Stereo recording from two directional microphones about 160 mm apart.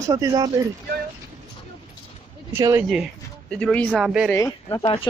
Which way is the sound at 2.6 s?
20° right (ahead or behind).